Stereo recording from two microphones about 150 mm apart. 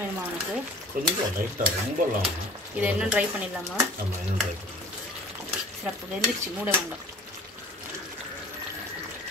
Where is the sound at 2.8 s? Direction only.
10° right (ahead or behind).